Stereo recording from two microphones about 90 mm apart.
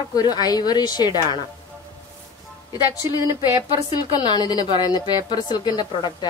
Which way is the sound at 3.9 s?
55° left (ahead or behind).